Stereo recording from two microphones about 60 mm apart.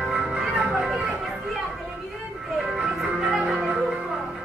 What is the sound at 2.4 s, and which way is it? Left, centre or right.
Music, centre.